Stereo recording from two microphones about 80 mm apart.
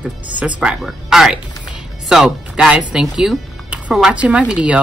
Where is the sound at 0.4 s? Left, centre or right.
Centre.